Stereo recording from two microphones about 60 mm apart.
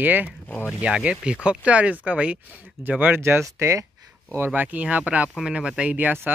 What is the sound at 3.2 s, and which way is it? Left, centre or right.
Speech, right.